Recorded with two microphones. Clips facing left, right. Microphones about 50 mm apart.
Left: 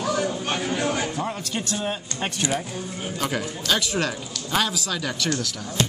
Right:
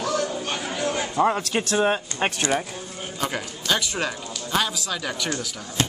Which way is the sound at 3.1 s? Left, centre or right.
Centre.